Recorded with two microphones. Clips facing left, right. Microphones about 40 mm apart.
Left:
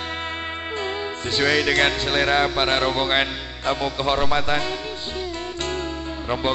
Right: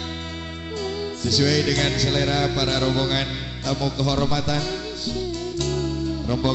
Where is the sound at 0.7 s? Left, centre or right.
Left.